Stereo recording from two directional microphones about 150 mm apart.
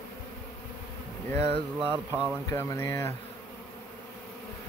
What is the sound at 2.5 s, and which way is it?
Speech, 20° left (ahead or behind).